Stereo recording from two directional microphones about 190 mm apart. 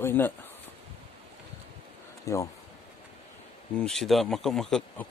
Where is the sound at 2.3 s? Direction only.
15° left (ahead or behind).